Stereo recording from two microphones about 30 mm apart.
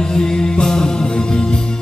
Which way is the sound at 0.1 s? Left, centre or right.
Left.